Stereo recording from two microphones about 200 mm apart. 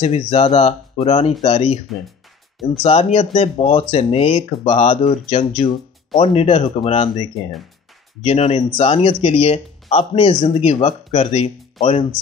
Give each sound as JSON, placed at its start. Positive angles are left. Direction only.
{"t": 0.0, "sound": "speech", "side_deg": 30}
{"t": 2.8, "sound": "speech", "side_deg": 30}